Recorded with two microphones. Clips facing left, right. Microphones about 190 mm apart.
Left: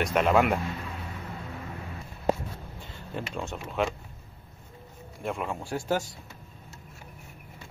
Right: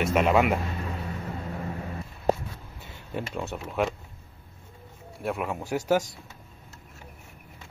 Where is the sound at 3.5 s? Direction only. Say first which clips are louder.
Right 1 dB; 5° right (ahead or behind).